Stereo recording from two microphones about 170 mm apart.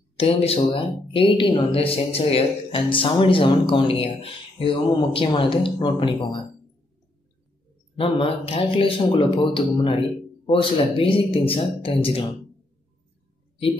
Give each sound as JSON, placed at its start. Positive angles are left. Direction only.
{"t": 0.2, "sound": "speech", "side_deg": 35}
{"t": 8.0, "sound": "speech", "side_deg": 35}